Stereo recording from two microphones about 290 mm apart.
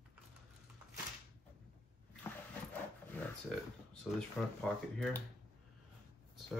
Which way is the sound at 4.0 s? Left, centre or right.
Centre.